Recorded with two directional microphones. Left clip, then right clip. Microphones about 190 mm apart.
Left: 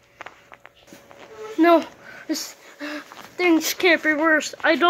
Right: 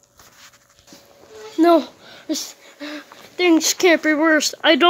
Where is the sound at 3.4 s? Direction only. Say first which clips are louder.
Right 3 dB; 55° right (ahead or behind).